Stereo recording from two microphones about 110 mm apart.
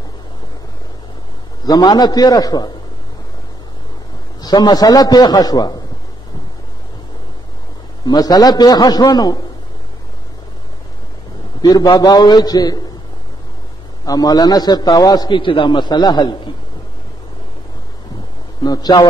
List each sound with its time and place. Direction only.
1.6 s a man's voice: 40° left (ahead or behind)
4.4 s a man's voice: 40° left (ahead or behind)
8.0 s a man's voice: 35° left (ahead or behind)
11.6 s a man's voice: 35° left (ahead or behind)
14.0 s a man's voice: 35° left (ahead or behind)
18.6 s a man's voice: 40° left (ahead or behind)